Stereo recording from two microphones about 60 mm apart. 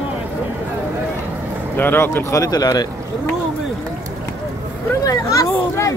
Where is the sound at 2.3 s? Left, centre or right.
Left.